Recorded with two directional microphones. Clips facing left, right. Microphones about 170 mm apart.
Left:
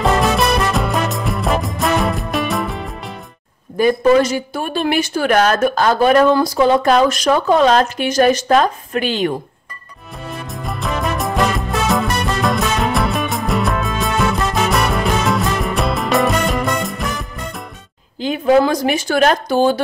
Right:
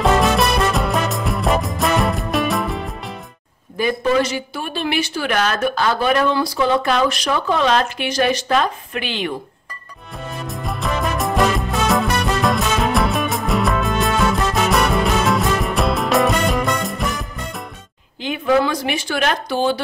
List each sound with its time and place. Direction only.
0.0 s music: centre (ahead or behind)
3.7 s a woman's voice: 45° left (ahead or behind)
10.4 s music: centre (ahead or behind)
18.2 s speech: 40° left (ahead or behind)